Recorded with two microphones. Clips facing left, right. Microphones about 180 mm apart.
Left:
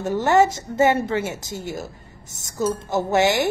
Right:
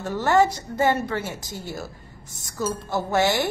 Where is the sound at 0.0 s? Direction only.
20° left (ahead or behind).